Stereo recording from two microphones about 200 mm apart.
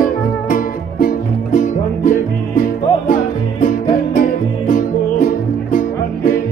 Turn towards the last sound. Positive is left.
turn(degrees=45)  # may be behind; listen again after turning